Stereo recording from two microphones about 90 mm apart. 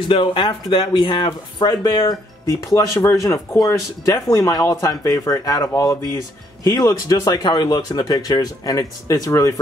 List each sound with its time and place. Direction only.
0.1 s speech: 70° left (ahead or behind); by 9.6 s 35° left (ahead or behind)